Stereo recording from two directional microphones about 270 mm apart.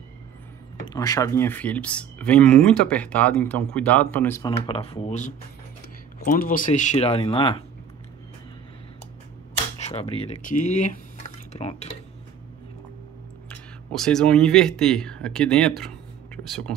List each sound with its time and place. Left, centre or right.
0.8 s speech: centre
9.8 s speech: left
13.5 s speech: centre